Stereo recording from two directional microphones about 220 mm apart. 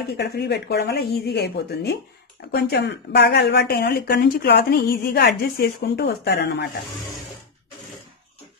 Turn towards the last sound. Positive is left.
turn(degrees=50)  # may be behind; listen again after turning